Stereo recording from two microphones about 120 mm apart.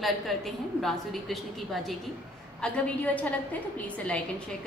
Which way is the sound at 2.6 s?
10° left (ahead or behind).